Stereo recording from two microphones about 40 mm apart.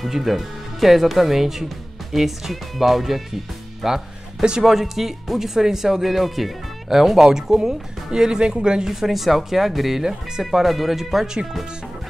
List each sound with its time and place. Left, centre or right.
0.0 s speech: centre
3.8 s speech: centre
4.6 s speech: centre
8.8 s speech: centre